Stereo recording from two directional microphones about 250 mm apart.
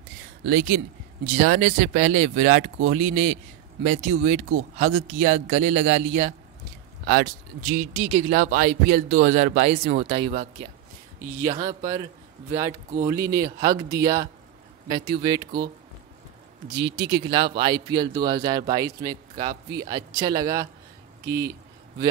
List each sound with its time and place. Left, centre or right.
0.5 s a man's voice: right; by 15.4 s centre
16.7 s a man's voice: centre
21.2 s a sound: centre